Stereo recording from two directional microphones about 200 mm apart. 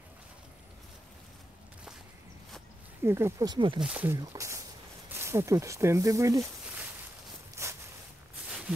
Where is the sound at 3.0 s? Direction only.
10° right (ahead or behind).